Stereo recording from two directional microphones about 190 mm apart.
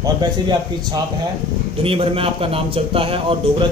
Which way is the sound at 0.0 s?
20° right (ahead or behind).